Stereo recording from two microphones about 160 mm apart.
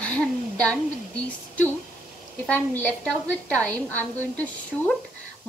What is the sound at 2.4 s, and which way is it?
A woman's voice, 10° left (ahead or behind).